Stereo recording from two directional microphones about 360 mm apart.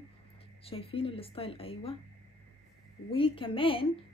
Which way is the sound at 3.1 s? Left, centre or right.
Centre.